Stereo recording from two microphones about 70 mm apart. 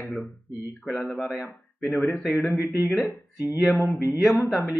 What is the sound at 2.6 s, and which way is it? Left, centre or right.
Speech, left.